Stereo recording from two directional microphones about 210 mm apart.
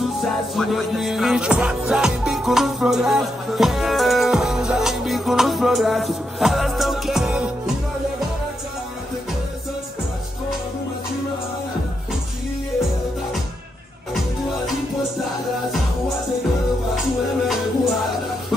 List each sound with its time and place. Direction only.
0.2 s music: centre (ahead or behind)
17.5 s music: centre (ahead or behind)